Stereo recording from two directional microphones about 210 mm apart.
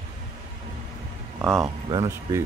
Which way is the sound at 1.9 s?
20° right (ahead or behind).